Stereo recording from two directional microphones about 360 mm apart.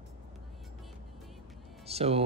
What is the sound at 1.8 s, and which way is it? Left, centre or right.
Music, centre.